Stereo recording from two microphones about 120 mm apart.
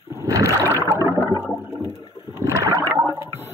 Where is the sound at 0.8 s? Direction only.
25° right (ahead or behind).